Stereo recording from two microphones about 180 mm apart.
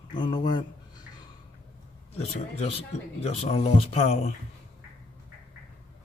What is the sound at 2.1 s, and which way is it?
Speech, 35° left (ahead or behind).